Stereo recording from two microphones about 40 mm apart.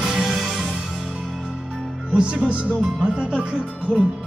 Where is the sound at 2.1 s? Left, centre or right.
Right.